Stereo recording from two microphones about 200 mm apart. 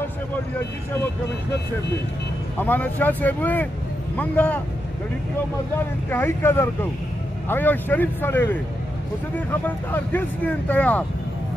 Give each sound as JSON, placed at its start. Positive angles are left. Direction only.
{"t": 2.6, "sound": "speech", "side_deg": 10}
{"t": 6.0, "sound": "speech", "side_deg": 10}
{"t": 9.5, "sound": "speech", "side_deg": 10}